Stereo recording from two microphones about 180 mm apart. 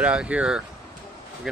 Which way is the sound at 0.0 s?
5° right (ahead or behind).